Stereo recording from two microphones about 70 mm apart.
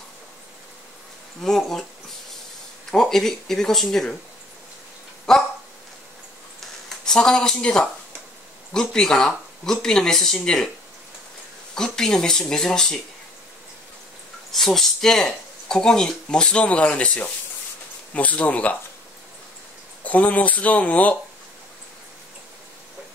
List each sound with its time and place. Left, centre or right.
1.4 s speech: centre
5.3 s a sound: centre
7.1 s speech: centre
11.7 s speech: centre
14.5 s speech: centre
20.1 s speech: left